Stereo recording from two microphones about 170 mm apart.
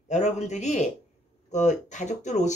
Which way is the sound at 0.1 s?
40° left (ahead or behind).